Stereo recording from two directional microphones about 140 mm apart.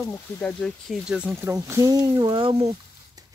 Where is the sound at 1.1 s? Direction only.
10° right (ahead or behind); by 2.7 s 45° right (ahead or behind).